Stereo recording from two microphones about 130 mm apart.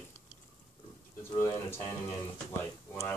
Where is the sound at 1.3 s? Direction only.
20° left (ahead or behind).